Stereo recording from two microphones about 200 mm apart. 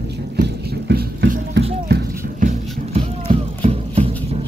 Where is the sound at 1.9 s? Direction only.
40° right (ahead or behind).